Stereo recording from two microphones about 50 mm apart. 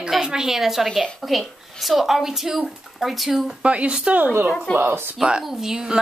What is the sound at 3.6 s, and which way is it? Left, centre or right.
Speech, right.